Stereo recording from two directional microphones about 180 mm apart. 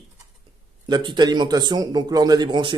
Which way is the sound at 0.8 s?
25° right (ahead or behind).